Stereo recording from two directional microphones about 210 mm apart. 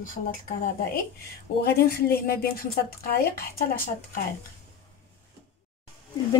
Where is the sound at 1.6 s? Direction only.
50° left (ahead or behind).